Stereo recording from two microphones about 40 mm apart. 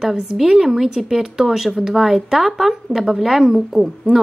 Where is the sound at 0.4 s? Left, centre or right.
Centre.